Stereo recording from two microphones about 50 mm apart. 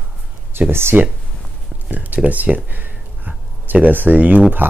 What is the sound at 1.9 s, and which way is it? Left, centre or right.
Speech, right.